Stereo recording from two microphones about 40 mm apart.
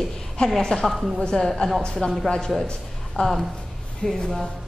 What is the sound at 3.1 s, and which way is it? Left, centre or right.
Speech, centre.